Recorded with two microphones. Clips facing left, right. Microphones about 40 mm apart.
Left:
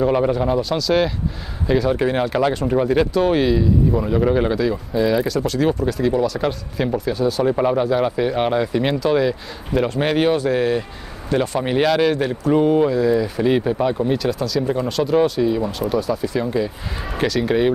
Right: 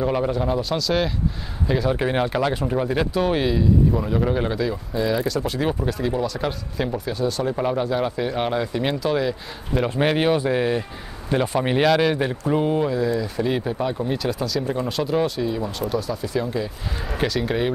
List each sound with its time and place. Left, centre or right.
0.0 s speech: centre
2.6 s speech: centre
5.5 s speech: centre
11.3 s speech: centre
11.6 s speech: centre
13.1 s speech: centre
14.1 s speech: centre
15.4 s speech: centre